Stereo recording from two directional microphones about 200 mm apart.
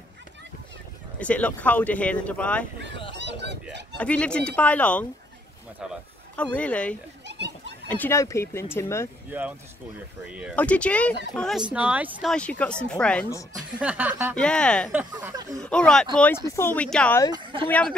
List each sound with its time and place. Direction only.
1.2 s speech: 5° left (ahead or behind)
3.2 s speech: 60° right (ahead or behind)
4.0 s speech: 5° left (ahead or behind)
6.3 s speech: 5° left (ahead or behind)
7.2 s a sound: 60° right (ahead or behind)
7.9 s speech: 10° left (ahead or behind)
9.3 s speech: 10° right (ahead or behind)
10.5 s speech: 5° left (ahead or behind)
13.7 s speech: 5° right (ahead or behind)
14.3 s speech: 5° left (ahead or behind)
14.9 s speech: 5° right (ahead or behind)
15.6 s speech: 5° left (ahead or behind)
17.3 s speech: 25° right (ahead or behind)
17.6 s speech: 5° left (ahead or behind)